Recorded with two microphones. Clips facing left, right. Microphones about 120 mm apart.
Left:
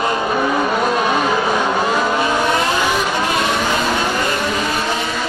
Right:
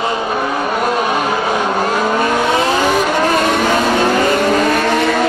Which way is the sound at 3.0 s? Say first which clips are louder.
Right 5 dB; 45° right (ahead or behind).